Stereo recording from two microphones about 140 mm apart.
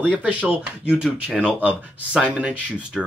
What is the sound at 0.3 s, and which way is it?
Speech, 10° right (ahead or behind).